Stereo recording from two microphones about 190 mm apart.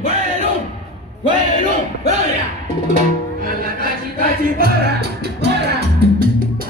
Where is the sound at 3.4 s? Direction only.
50° right (ahead or behind).